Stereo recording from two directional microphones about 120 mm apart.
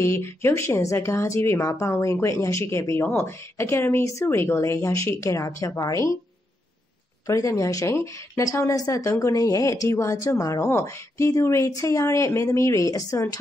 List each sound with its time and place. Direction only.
0.0 s speech: 20° left (ahead or behind)
7.2 s speech: 25° left (ahead or behind)